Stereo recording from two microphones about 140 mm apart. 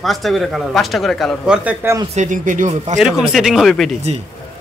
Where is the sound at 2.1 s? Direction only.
65° right (ahead or behind).